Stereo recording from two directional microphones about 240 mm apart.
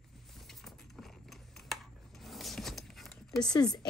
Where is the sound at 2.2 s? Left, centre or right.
Centre.